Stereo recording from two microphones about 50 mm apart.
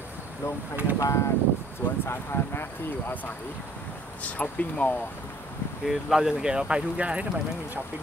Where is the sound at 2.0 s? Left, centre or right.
Left.